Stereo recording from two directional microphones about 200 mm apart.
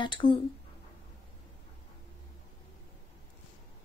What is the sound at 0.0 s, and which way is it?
Speech, 25° left (ahead or behind).